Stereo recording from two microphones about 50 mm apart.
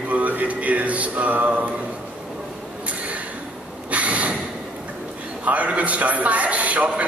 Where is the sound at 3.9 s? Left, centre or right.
Right.